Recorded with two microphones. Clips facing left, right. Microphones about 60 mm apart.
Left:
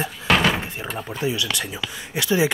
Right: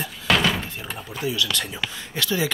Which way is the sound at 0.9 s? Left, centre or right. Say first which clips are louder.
Left 1 dB; left.